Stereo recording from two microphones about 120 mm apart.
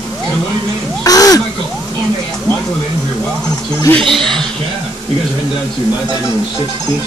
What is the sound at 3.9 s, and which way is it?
Speech, 5° left (ahead or behind).